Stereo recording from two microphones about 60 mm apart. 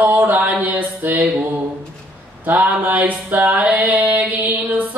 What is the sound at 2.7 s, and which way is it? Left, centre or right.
Mantra, right.